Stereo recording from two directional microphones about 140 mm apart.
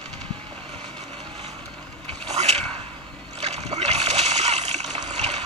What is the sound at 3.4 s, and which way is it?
Splash, 50° right (ahead or behind).